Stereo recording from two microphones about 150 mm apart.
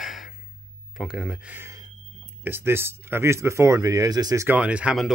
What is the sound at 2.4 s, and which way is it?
Speech, 15° right (ahead or behind).